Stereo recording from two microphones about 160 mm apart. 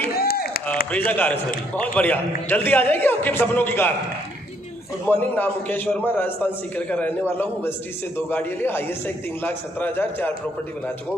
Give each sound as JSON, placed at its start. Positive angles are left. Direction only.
{"t": 0.1, "sound": "a sound", "side_deg": 70}
{"t": 0.9, "sound": "a man's voice", "side_deg": 10}
{"t": 5.0, "sound": "a man's voice", "side_deg": 10}